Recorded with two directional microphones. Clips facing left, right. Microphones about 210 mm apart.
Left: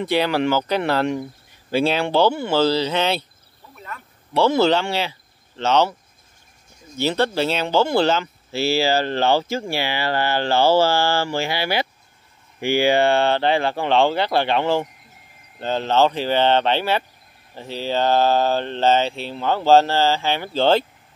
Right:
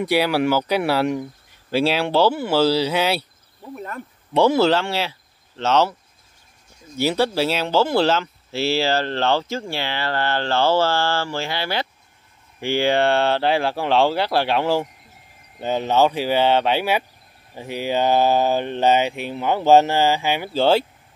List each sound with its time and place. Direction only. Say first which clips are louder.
0.0 s mantra: right 1 dB; 10° right (ahead or behind)
1.7 s speech: even; 5° right (ahead or behind)
3.7 s a sound: right 6 dB; 45° right (ahead or behind)
4.3 s speech: right 2 dB; 15° right (ahead or behind)
4.6 s speech: even; centre (ahead or behind)
7.0 s speech: right 1 dB; 10° right (ahead or behind)
15.6 s mantra: even; 10° right (ahead or behind)